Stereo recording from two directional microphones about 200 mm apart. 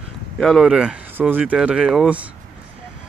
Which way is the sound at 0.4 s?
Centre (ahead or behind).